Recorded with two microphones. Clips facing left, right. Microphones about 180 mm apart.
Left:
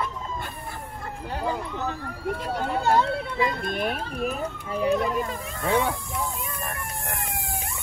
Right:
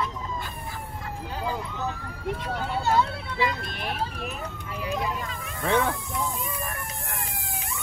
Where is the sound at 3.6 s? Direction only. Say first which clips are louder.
Left 4 dB; 50° left (ahead or behind).